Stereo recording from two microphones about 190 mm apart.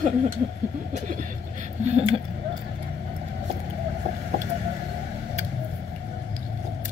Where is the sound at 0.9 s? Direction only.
45° right (ahead or behind).